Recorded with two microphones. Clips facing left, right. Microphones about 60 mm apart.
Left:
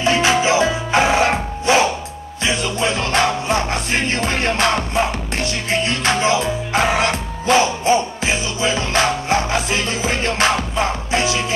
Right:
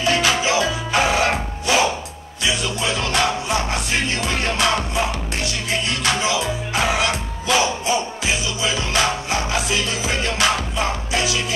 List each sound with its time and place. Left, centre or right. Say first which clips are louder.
0.0 s music: left 3 dB; left